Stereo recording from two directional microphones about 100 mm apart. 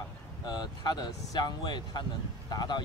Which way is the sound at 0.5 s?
45° left (ahead or behind).